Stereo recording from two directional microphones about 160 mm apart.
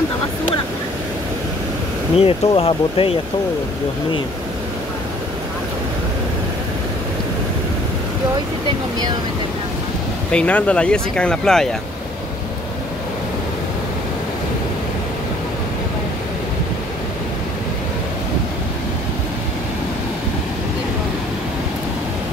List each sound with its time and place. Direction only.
2.1 s speech: 35° left (ahead or behind)
10.3 s speech: 5° left (ahead or behind)